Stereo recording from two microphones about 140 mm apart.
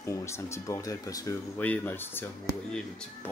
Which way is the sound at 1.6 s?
10° left (ahead or behind).